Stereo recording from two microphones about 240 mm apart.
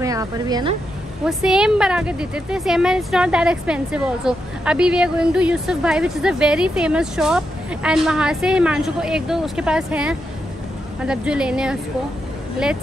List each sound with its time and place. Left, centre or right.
0.0 s speech: centre
1.2 s a woman's voice: centre